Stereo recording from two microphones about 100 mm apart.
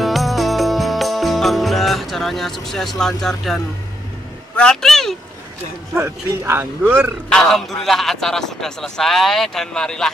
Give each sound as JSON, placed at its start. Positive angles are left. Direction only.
{"t": 0.0, "sound": "music", "side_deg": 0}
{"t": 4.6, "sound": "speech", "side_deg": 5}
{"t": 5.9, "sound": "speech", "side_deg": -25}
{"t": 6.8, "sound": "speech", "side_deg": -10}
{"t": 7.2, "sound": "a man's voice", "side_deg": 5}